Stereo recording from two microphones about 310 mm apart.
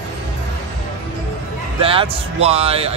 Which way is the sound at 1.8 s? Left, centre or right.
Centre.